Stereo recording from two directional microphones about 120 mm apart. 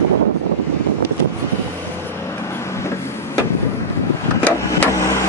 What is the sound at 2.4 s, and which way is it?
Vehicle, 20° left (ahead or behind).